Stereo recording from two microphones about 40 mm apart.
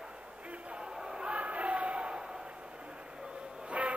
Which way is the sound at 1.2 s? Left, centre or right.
Right.